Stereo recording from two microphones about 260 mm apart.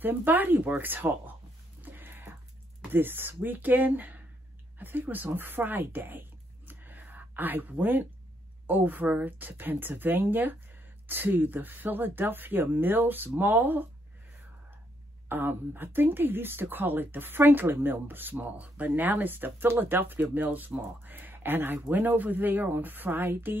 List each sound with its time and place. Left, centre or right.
0.0 s a woman's voice: centre
1.8 s music: centre
2.9 s a woman's voice: centre
6.7 s a sound: centre
8.6 s a woman's voice: centre
15.2 s a woman's voice: centre